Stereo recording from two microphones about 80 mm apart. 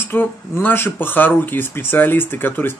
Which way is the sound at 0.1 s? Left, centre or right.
Left.